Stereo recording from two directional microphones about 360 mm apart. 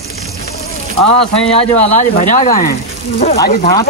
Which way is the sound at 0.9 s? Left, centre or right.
Right.